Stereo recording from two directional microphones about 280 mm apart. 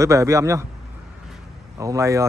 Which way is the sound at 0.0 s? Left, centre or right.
Centre.